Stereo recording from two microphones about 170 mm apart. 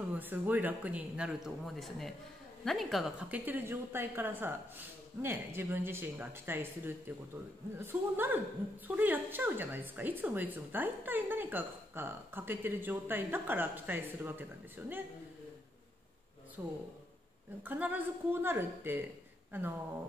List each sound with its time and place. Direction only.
0.1 s speech: 10° right (ahead or behind)
16.6 s speech: 10° right (ahead or behind)